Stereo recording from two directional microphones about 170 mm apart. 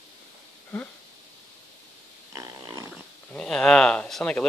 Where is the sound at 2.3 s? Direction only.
20° right (ahead or behind).